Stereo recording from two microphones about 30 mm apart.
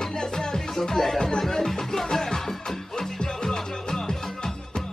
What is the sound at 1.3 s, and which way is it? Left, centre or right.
Speech, centre.